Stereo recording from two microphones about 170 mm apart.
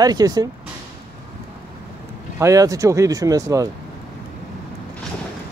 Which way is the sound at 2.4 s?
20° right (ahead or behind).